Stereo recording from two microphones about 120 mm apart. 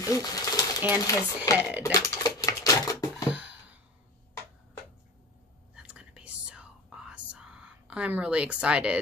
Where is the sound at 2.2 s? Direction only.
30° left (ahead or behind).